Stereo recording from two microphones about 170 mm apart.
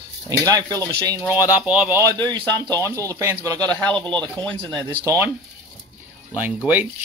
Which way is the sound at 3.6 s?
5° left (ahead or behind).